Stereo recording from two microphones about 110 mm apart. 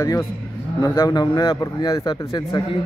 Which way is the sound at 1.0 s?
40° left (ahead or behind).